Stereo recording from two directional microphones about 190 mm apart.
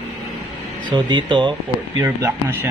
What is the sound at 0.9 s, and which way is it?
Speech, 25° right (ahead or behind).